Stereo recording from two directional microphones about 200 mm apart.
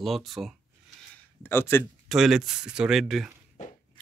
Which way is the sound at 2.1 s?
Centre (ahead or behind).